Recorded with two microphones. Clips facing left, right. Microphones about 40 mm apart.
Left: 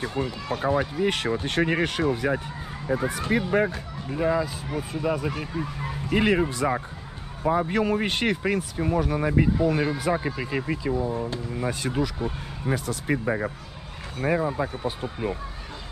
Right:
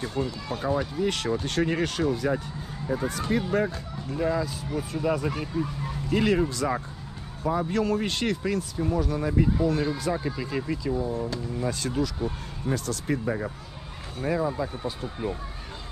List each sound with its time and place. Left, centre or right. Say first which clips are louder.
0.2 s speech: even; left
0.5 s speech: left 6 dB; left; by 5.5 s centre
5.5 s speech: right 1 dB; left